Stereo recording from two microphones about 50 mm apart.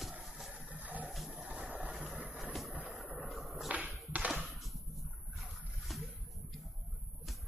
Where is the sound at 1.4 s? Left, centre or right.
Right.